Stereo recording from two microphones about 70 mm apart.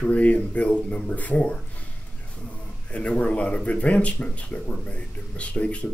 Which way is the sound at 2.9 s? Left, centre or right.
Centre.